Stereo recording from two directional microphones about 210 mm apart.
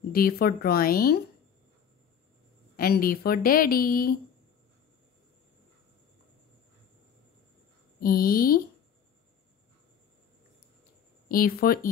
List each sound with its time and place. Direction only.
0.1 s a woman's voice: 45° left (ahead or behind)
2.7 s a woman's voice: 45° left (ahead or behind)
8.0 s a woman's voice: 45° left (ahead or behind)
11.2 s a woman's voice: 45° left (ahead or behind)